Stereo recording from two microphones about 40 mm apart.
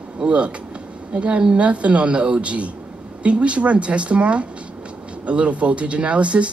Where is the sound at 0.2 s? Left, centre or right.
Right.